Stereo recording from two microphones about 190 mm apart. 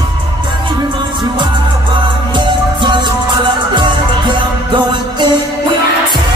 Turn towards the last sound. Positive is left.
turn(degrees=-25)  # may be behind; listen again after turning